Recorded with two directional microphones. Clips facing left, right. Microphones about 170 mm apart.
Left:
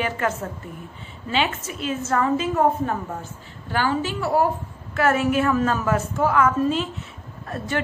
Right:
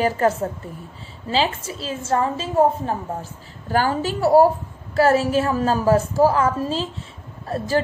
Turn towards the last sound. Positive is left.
turn(degrees=-30)  # may be behind; listen again after turning